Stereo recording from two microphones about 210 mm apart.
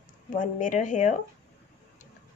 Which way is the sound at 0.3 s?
40° left (ahead or behind).